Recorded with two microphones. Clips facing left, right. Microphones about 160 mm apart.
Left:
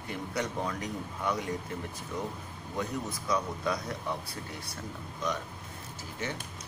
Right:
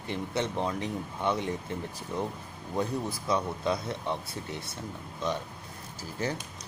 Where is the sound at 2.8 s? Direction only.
30° right (ahead or behind).